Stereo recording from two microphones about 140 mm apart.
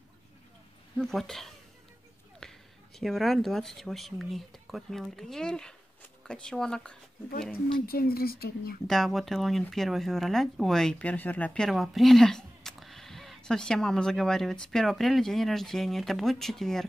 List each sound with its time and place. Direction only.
0.9 s speech: centre (ahead or behind)
2.4 s a sound: 5° left (ahead or behind)
3.0 s speech: centre (ahead or behind)
7.8 s speech: 90° left
8.8 s speech: centre (ahead or behind)